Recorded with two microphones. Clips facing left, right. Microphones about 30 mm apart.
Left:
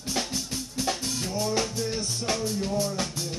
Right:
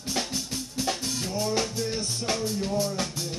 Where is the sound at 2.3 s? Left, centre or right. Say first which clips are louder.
Even; centre.